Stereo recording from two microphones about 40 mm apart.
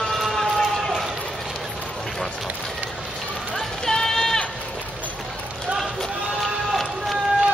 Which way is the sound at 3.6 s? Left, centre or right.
Centre.